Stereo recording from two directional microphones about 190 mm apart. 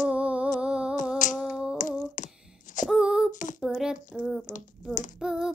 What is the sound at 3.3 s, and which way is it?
Speech, 40° left (ahead or behind).